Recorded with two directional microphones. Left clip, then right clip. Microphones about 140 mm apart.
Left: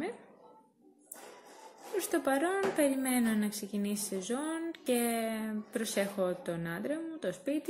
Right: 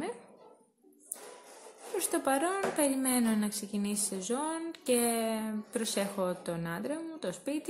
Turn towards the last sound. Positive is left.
turn(degrees=-25)  # may be behind; listen again after turning